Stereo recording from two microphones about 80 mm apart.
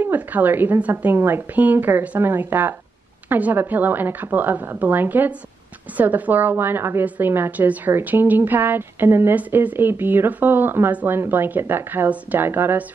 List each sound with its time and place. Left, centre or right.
0.0 s speech: right